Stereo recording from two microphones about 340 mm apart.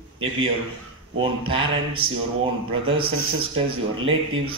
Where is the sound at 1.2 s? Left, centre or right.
Centre.